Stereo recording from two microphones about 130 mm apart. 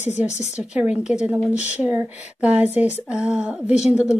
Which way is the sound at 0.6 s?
5° right (ahead or behind).